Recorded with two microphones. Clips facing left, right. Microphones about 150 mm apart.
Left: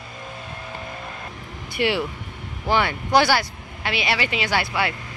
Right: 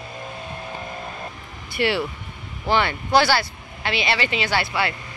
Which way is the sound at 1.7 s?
15° left (ahead or behind).